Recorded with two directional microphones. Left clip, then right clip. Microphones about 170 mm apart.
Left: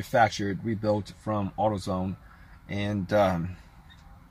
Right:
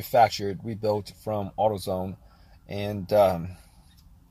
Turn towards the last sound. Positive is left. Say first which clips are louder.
# right 3 dB
turn(degrees=-20)  # may be behind; listen again after turning